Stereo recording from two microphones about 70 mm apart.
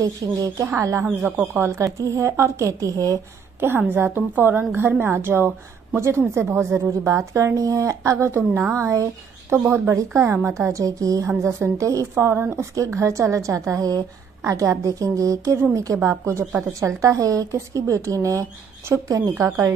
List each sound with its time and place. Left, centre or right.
0.0 s a woman's voice: right
1.2 s speech: right
1.5 s a woman's voice: right
3.5 s a woman's voice: right
7.1 s a woman's voice: right
11.4 s a woman's voice: right
12.7 s a woman's voice: right